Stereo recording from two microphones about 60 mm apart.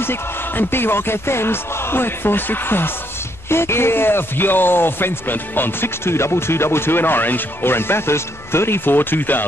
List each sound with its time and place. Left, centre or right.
0.0 s speech: left